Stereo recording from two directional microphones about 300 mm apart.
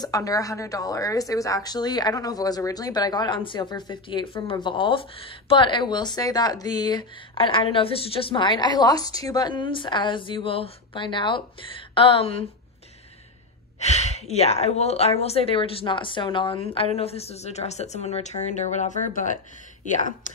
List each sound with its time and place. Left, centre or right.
0.0 s a woman's voice: centre
13.7 s a woman's voice: left